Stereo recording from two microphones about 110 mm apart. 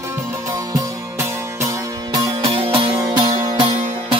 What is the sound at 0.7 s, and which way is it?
Music, 25° right (ahead or behind).